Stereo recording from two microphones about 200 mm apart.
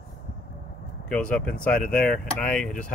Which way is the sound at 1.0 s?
5° left (ahead or behind).